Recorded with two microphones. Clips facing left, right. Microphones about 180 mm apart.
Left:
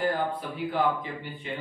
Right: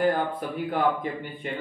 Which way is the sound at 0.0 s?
50° right (ahead or behind).